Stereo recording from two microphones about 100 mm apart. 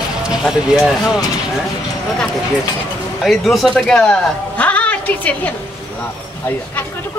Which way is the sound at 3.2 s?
Centre (ahead or behind).